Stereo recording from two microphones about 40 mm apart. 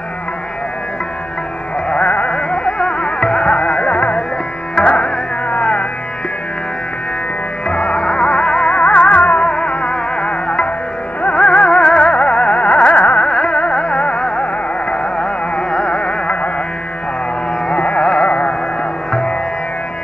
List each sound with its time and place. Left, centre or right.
1.9 s music: left
7.6 s music: left
12.9 s carnatic music: left
13.3 s music: left
15.1 s carnatic music: left
17.6 s carnatic music: left